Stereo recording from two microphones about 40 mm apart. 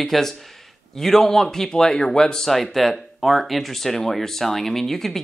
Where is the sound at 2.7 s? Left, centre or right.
Centre.